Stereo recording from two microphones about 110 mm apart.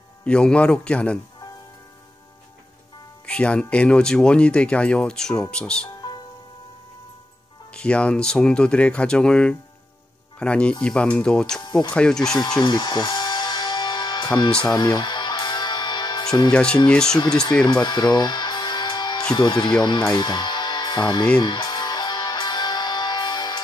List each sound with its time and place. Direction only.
0.2 s speech: 10° left (ahead or behind)
3.3 s speech: 10° left (ahead or behind)
7.7 s speech: 10° left (ahead or behind)
12.4 s music: 40° left (ahead or behind)
16.5 s speech: 10° left (ahead or behind)
17.6 s music: 40° left (ahead or behind)
19.3 s speech: 40° left (ahead or behind)
21.4 s music: 40° left (ahead or behind)